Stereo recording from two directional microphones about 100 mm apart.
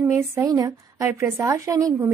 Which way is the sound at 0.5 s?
35° right (ahead or behind).